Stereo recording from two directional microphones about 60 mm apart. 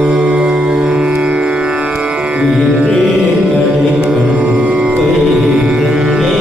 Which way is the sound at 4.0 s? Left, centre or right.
Centre.